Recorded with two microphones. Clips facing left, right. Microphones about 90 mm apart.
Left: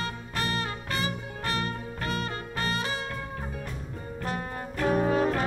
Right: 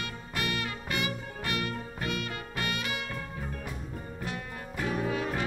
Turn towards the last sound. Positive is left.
turn(degrees=40)  # may be behind; listen again after turning